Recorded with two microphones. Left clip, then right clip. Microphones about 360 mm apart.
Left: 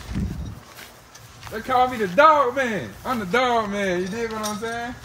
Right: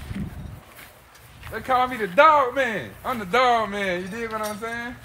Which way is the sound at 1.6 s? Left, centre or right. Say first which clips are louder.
Left 2 dB; centre.